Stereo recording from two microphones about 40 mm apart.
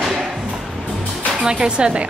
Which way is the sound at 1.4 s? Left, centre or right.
Right.